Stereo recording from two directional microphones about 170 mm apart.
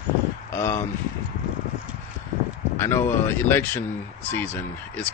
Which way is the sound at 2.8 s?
15° left (ahead or behind).